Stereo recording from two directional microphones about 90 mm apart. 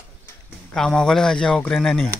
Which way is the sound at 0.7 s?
5° left (ahead or behind).